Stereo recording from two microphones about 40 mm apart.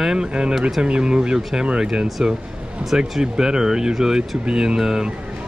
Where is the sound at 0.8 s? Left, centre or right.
Right.